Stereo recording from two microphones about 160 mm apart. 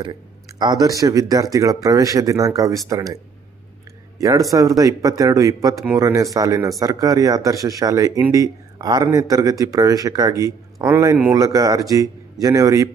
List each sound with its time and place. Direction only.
0.0 s speech: 25° right (ahead or behind)
4.5 s speech: 20° right (ahead or behind)